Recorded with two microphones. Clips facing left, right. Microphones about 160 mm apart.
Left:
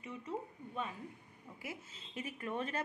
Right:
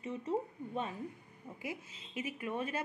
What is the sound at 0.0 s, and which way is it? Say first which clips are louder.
Speech: right 6 dB; 30° right (ahead or behind).